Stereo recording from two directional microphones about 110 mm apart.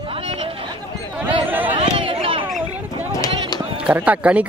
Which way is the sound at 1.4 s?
15° right (ahead or behind).